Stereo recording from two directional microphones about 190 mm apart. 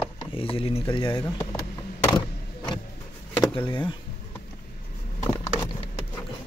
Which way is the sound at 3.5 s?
25° left (ahead or behind).